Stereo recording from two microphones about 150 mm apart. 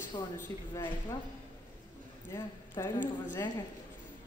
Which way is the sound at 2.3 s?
20° left (ahead or behind).